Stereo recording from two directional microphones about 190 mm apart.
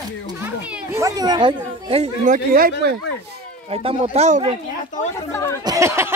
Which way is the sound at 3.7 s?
30° right (ahead or behind).